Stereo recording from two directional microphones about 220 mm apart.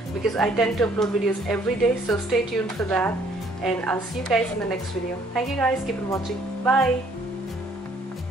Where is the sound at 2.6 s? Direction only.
5° left (ahead or behind).